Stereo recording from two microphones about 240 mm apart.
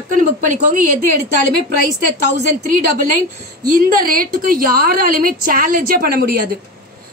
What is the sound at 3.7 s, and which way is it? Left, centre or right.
Speech, right.